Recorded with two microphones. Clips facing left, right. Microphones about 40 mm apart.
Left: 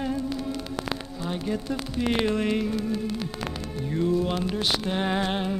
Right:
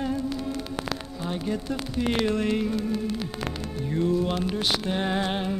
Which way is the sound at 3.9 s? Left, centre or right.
Centre.